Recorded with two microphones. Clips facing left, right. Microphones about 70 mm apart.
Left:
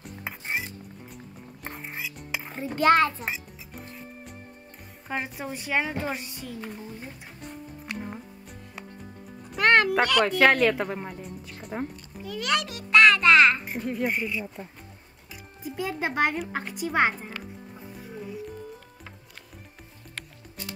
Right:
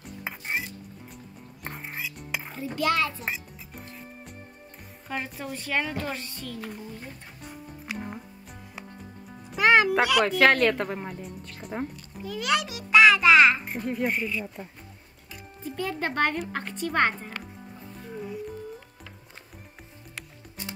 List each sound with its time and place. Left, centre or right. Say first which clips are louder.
0.0 s dishes: even; centre
1.6 s cutlery: even; centre
2.5 s a child's voice: left 6 dB; left
3.3 s music: even; centre
5.0 s a woman's voice: left 1 dB; centre
7.4 s music: left 1 dB; centre
9.6 s a child's voice: even; centre
15.3 s speech: even; centre
18.0 s music: right 2 dB; centre